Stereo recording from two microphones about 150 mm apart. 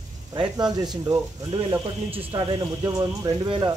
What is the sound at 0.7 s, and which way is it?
Speech, 25° right (ahead or behind).